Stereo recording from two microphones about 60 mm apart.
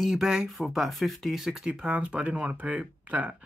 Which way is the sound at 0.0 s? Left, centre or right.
Centre.